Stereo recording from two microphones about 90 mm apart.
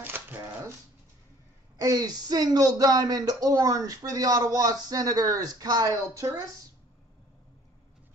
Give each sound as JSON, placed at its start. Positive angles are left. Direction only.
{"t": 0.0, "sound": "shuffling cards", "side_deg": -20}
{"t": 1.8, "sound": "speech", "side_deg": -45}